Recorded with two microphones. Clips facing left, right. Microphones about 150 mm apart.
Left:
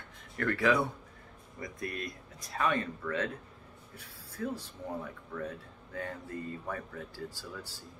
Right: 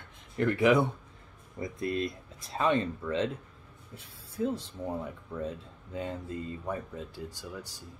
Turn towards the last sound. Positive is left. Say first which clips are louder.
# right 2 dB
turn(degrees=-15)  # may be behind; listen again after turning